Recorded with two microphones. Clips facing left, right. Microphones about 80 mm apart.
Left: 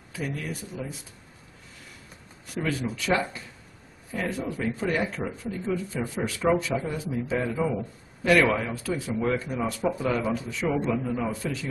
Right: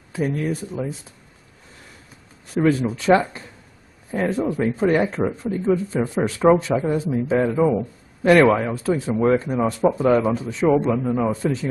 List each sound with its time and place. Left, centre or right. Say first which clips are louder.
0.3 s a man's voice: right 9 dB; right
2.5 s a man's voice: right 10 dB; right